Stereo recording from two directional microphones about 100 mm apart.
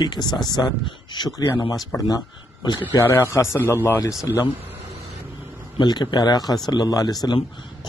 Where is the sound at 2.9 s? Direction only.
30° left (ahead or behind).